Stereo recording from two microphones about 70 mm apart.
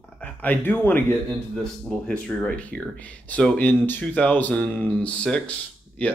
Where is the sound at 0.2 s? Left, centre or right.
Left.